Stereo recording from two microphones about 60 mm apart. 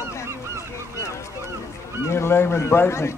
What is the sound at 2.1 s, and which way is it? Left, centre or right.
A man's voice, left.